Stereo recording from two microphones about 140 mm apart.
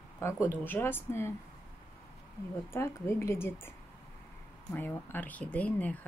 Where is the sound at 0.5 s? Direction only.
15° left (ahead or behind).